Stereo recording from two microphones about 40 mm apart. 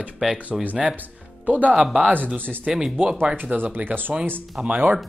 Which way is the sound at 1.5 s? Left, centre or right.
Right.